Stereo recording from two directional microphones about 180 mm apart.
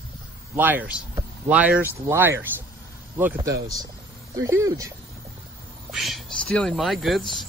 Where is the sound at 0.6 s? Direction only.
10° right (ahead or behind).